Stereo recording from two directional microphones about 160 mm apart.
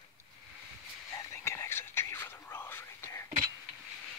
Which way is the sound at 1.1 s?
15° left (ahead or behind).